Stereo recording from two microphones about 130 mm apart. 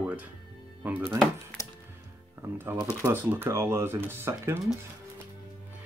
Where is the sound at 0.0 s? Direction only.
10° right (ahead or behind).